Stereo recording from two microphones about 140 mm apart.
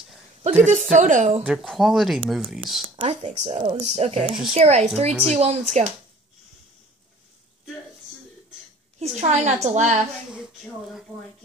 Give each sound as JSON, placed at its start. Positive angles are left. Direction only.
{"t": 0.4, "sound": "a woman's voice", "side_deg": -55}
{"t": 1.4, "sound": "speech", "side_deg": -5}
{"t": 3.0, "sound": "speech", "side_deg": -55}
{"t": 9.0, "sound": "a woman's voice", "side_deg": -55}
{"t": 10.3, "sound": "speech", "side_deg": -5}